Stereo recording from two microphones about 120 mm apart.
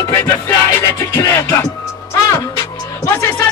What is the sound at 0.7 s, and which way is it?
Music, 20° left (ahead or behind).